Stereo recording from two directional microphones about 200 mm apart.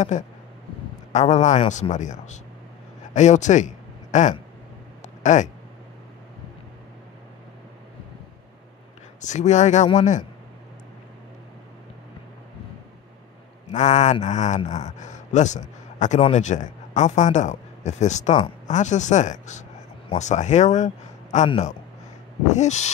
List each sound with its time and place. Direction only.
0.1 s a man's voice: 40° left (ahead or behind)
9.2 s a man's voice: 35° left (ahead or behind)
13.7 s a man's voice: 35° left (ahead or behind)